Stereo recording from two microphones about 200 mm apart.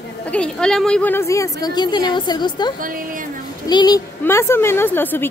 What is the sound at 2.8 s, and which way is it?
Speech, 45° right (ahead or behind).